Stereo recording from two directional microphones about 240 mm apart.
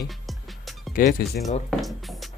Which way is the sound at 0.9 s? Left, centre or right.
Left.